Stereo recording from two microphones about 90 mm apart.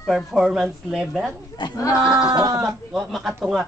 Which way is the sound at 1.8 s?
35° left (ahead or behind).